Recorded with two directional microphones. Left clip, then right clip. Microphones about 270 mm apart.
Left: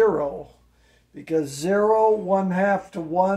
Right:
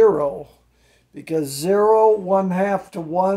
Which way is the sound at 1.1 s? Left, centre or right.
Right.